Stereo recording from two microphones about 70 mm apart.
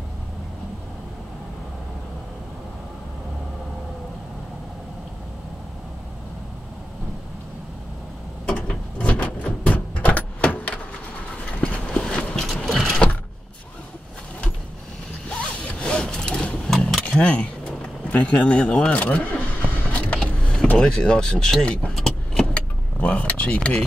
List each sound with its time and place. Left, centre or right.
8.5 s a sound: centre
15.2 s zipper: centre
17.0 s a sound: centre
18.1 s speech: left
19.9 s power windows: centre
21.9 s keys jangling: centre
22.9 s speech: centre